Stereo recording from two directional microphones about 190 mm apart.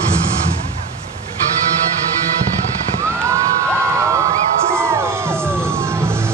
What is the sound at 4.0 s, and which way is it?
Crowd, 15° right (ahead or behind).